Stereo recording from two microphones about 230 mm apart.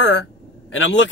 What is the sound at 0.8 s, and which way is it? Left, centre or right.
Speech, left.